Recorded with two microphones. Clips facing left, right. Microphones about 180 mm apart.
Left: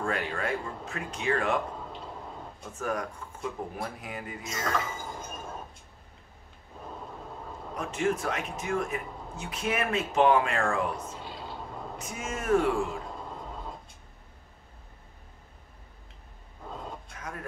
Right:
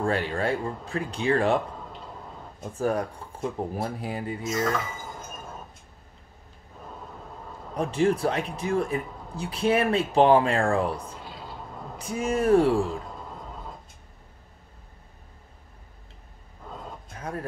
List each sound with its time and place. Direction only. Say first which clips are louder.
0.0 s speech: right 5 dB; 30° right (ahead or behind)
2.6 s speech: right 6 dB; 35° right (ahead or behind)
4.4 s speech: right 4 dB; centre (ahead or behind)
7.7 s speech: right 6 dB; 35° right (ahead or behind)
11.1 s a sound: even; centre (ahead or behind)
12.0 s speech: right 13 dB; 35° right (ahead or behind)
17.1 s a sound: right 6 dB; 30° right (ahead or behind)